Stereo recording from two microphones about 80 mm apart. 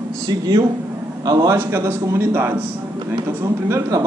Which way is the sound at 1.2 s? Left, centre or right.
Right.